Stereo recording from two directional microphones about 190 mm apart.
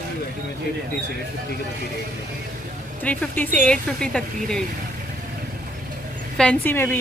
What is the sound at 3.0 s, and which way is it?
Speech, 10° left (ahead or behind).